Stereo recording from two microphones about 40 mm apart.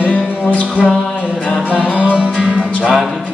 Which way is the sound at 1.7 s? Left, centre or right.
Right.